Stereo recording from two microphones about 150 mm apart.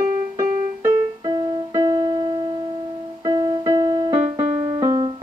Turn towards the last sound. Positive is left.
turn(degrees=-25)  # may be behind; listen again after turning